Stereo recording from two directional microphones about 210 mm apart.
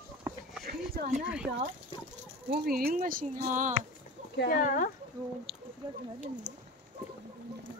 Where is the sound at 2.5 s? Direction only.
45° right (ahead or behind).